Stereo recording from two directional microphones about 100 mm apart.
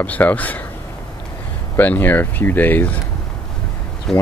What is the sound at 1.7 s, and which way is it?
Speech, 20° left (ahead or behind).